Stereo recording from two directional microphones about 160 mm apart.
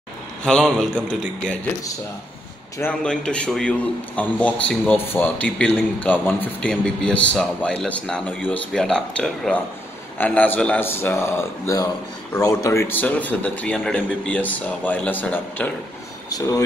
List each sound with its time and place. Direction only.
0.4 s speech: 5° left (ahead or behind)
2.8 s a man's voice: 5° left (ahead or behind)
16.3 s speech: 20° left (ahead or behind)